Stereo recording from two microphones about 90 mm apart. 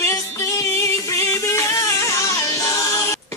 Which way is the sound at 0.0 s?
35° left (ahead or behind).